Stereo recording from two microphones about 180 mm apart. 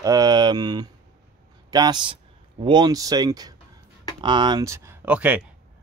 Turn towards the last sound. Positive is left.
turn(degrees=-10)  # may be behind; listen again after turning